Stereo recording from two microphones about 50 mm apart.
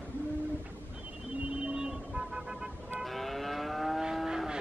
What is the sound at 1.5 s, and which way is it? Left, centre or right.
Vehicle, centre.